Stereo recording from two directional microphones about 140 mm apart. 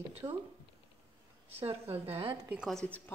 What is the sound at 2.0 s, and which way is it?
Speech, 45° right (ahead or behind).